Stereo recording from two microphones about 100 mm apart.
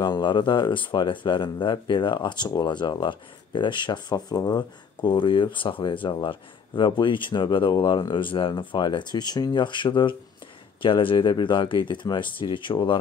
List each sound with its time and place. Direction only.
0.0 s speech: 45° left (ahead or behind)